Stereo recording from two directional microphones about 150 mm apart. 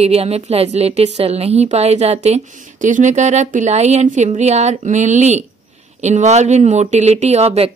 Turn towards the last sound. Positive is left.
turn(degrees=-45)  # may be behind; listen again after turning